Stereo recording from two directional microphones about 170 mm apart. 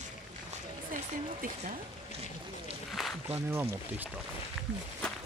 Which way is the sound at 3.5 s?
15° right (ahead or behind).